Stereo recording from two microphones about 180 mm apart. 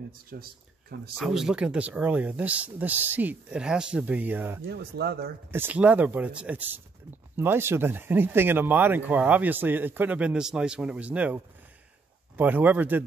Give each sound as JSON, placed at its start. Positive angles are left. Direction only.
{"t": 0.3, "sound": "speech", "side_deg": -55}
{"t": 1.1, "sound": "speech", "side_deg": 0}
{"t": 4.6, "sound": "speech", "side_deg": -65}
{"t": 5.5, "sound": "speech", "side_deg": -10}